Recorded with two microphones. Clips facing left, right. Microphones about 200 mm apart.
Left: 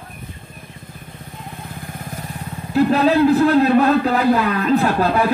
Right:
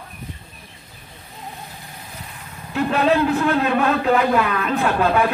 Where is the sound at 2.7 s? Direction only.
35° left (ahead or behind).